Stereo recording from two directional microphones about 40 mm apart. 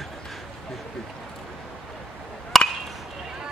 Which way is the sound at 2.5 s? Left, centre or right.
Centre.